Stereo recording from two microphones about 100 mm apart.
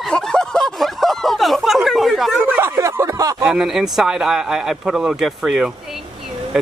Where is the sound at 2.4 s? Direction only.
20° right (ahead or behind).